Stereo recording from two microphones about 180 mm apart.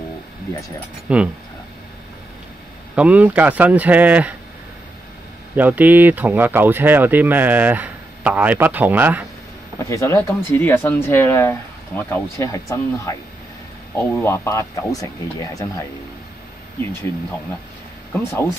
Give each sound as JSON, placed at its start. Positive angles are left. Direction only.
{"t": 1.0, "sound": "speech", "side_deg": -5}
{"t": 3.0, "sound": "speech", "side_deg": -10}
{"t": 5.6, "sound": "speech", "side_deg": -10}
{"t": 9.8, "sound": "speech", "side_deg": 15}
{"t": 18.2, "sound": "speech", "side_deg": 15}